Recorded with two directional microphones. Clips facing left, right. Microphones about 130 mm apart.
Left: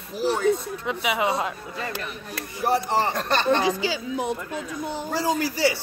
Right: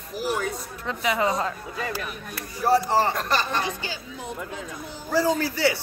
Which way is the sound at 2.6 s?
20° left (ahead or behind).